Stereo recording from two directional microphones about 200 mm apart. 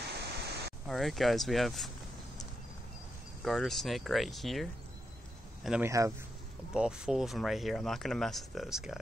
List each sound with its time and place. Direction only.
0.2 s pink noise: 55° right (ahead or behind)
0.8 s speech: centre (ahead or behind)
3.4 s a man's voice: centre (ahead or behind)
5.9 s speech: 15° right (ahead or behind)
6.7 s speech: 5° right (ahead or behind)